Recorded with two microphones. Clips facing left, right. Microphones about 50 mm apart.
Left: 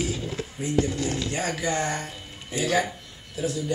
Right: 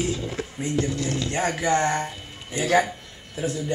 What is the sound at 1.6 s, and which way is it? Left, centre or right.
Speech, right.